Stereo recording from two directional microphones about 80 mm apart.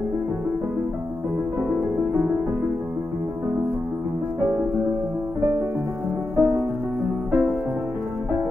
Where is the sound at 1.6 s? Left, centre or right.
Right.